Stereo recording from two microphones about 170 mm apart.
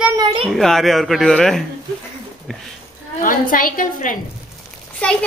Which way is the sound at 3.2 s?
55° left (ahead or behind).